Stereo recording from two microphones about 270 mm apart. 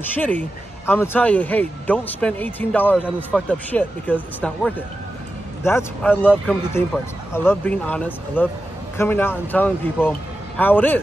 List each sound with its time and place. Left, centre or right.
0.0 s speech: centre